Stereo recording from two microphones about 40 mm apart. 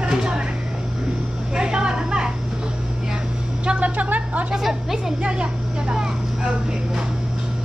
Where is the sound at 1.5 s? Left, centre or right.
Right.